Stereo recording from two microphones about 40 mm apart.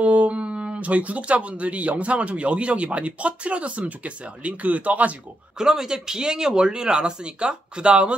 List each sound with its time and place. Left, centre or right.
0.0 s a sound: right
0.7 s speech: right
5.6 s speech: centre